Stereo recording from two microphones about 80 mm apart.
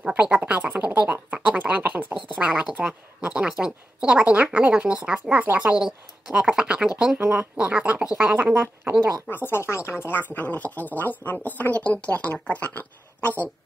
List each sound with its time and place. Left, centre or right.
0.0 s a sound: centre
2.3 s a woman's voice: centre
9.3 s speech: left